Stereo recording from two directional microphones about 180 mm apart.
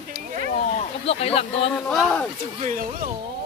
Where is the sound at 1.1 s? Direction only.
35° left (ahead or behind).